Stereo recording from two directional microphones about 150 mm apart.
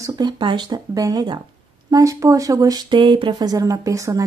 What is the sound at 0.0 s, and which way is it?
A woman's voice, 30° right (ahead or behind).